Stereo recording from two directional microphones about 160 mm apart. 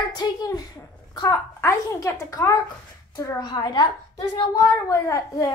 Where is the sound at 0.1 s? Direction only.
25° left (ahead or behind).